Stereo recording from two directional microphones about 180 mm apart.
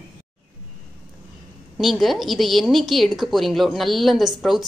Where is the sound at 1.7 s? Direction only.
Centre (ahead or behind).